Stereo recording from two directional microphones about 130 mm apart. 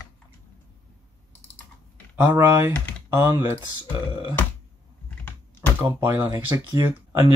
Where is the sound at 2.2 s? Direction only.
15° right (ahead or behind).